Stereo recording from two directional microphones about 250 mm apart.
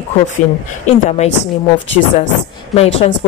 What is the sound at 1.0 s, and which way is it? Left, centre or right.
Speech, left.